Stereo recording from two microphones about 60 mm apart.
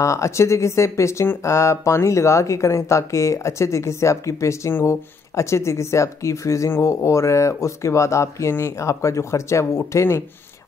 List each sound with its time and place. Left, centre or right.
0.0 s speech: left